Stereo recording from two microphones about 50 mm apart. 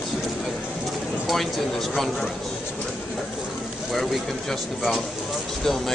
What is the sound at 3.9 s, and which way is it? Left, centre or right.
Speech, centre.